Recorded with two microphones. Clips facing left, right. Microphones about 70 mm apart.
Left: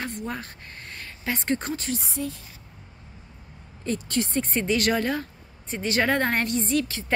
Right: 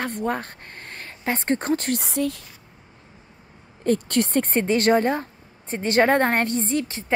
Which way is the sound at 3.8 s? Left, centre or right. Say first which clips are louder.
Right 6 dB; right.